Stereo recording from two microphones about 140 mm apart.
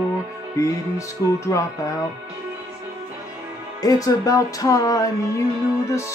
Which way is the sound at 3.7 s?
25° left (ahead or behind).